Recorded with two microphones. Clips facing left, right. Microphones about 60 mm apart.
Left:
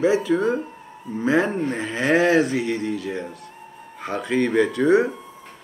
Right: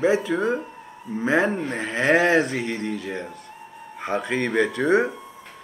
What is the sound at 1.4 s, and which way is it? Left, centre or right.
Speech, centre.